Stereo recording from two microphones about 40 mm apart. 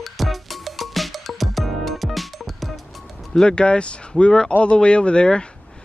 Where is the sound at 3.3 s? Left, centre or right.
Centre.